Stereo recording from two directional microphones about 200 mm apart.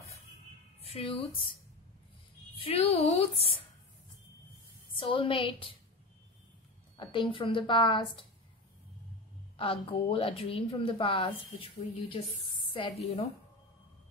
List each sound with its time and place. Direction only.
0.8 s a woman's voice: 30° left (ahead or behind)
4.9 s a woman's voice: 25° left (ahead or behind)
7.0 s a woman's voice: 25° left (ahead or behind)
9.6 s a woman's voice: 25° left (ahead or behind)